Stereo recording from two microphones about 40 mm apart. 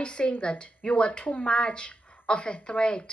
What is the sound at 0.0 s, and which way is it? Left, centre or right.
A woman's voice, left.